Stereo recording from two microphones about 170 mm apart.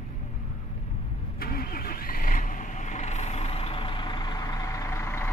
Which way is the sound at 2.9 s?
40° left (ahead or behind).